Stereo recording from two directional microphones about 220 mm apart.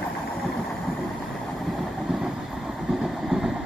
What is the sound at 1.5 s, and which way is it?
Vehicle, centre (ahead or behind).